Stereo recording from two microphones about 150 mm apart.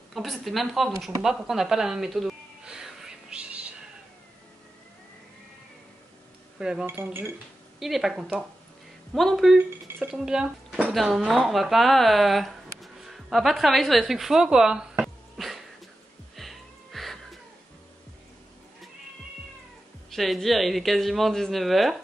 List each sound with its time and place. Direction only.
0.1 s speech: centre (ahead or behind)
1.2 s a sound: centre (ahead or behind)
6.6 s speech: 5° right (ahead or behind)
7.8 s speech: centre (ahead or behind)
16.3 s music: centre (ahead or behind)
20.1 s speech: centre (ahead or behind)